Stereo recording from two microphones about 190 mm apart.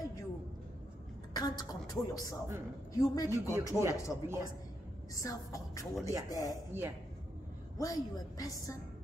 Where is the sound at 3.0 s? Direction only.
15° left (ahead or behind).